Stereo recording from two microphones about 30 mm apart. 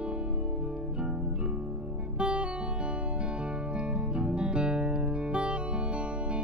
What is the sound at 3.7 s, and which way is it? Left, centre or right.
Music, right.